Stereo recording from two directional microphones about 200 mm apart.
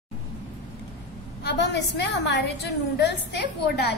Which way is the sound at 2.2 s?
60° left (ahead or behind).